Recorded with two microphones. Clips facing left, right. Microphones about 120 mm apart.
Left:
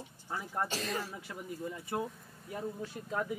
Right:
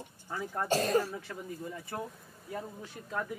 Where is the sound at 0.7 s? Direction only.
45° right (ahead or behind).